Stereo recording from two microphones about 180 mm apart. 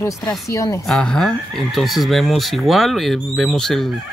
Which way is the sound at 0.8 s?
5° left (ahead or behind).